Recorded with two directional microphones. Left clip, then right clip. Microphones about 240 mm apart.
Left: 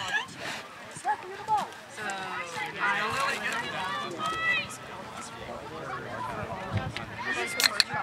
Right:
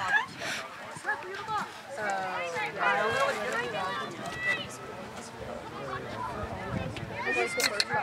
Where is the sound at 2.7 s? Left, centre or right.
Centre.